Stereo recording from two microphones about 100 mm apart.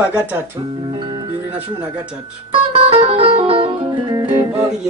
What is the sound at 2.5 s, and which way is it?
Music, 65° right (ahead or behind).